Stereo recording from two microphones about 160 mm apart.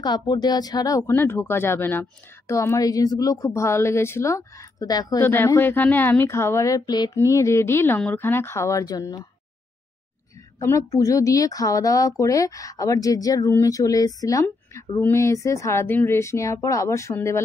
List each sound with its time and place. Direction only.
0.0 s a woman's voice: 25° left (ahead or behind)
10.6 s a woman's voice: 20° left (ahead or behind)